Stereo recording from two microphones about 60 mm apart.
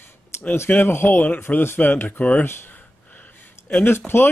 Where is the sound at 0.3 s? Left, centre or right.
Left.